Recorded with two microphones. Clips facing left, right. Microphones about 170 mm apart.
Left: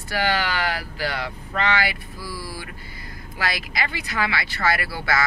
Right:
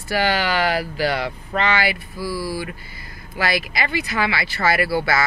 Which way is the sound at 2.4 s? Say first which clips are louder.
Right 9 dB; 5° right (ahead or behind).